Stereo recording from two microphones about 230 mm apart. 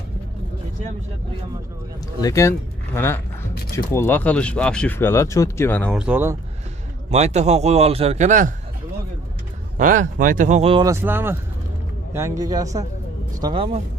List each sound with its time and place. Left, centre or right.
2.2 s speech: centre
7.1 s a man's voice: right
9.8 s speech: right
10.9 s a man's voice: centre